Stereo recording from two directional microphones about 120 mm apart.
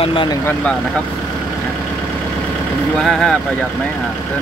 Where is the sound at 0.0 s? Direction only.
45° left (ahead or behind).